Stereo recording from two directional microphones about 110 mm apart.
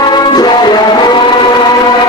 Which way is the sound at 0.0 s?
40° left (ahead or behind).